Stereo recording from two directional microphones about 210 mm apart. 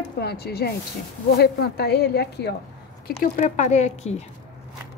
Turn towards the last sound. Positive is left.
turn(degrees=30)  # may be behind; listen again after turning